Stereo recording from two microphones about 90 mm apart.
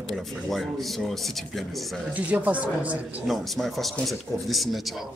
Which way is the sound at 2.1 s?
15° right (ahead or behind).